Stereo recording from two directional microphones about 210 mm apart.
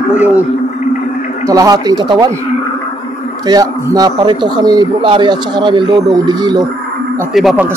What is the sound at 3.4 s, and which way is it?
A man's voice, 20° right (ahead or behind).